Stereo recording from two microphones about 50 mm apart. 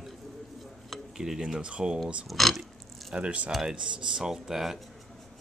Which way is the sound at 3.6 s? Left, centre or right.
Centre.